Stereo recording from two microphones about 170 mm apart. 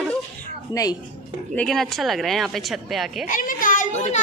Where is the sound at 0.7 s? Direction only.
20° left (ahead or behind).